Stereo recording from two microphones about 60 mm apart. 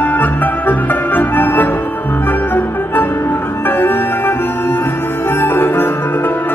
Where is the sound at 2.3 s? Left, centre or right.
Left.